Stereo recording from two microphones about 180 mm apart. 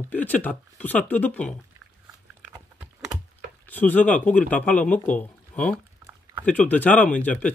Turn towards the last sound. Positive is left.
turn(degrees=5)  # may be behind; listen again after turning